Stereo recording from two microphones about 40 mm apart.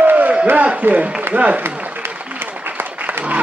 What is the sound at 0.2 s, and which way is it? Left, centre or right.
Crowd, right.